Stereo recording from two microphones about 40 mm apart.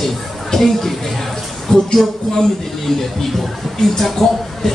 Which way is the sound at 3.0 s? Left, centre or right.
Centre.